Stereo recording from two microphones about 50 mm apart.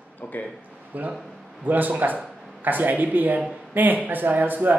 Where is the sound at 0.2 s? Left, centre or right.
Left.